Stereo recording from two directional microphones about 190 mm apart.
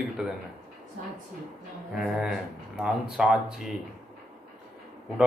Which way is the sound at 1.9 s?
Centre (ahead or behind).